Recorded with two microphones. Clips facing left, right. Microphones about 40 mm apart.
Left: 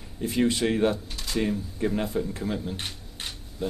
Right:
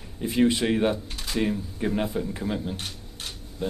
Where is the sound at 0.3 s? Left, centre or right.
Centre.